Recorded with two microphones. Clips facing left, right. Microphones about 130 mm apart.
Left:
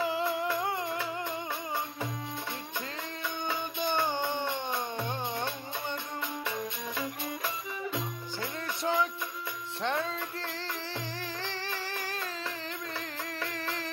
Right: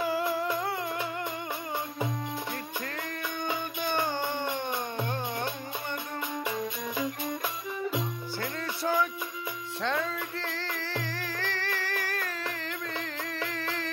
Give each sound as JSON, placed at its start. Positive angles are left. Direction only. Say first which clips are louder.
{"t": 4.5, "sound": "music", "louder": "right 1 dB", "side_deg": -15}
{"t": 8.4, "sound": "music", "louder": "right 1 dB", "side_deg": 25}
{"t": 13.6, "sound": "music", "louder": "right 2 dB", "side_deg": 20}